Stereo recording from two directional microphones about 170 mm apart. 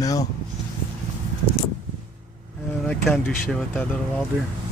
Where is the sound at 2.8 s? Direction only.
5° left (ahead or behind).